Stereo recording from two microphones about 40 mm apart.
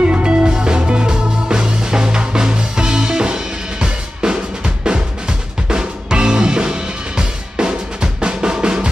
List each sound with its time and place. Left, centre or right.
0.0 s music: right